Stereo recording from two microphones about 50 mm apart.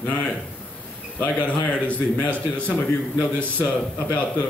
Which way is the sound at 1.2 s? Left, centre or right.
Left.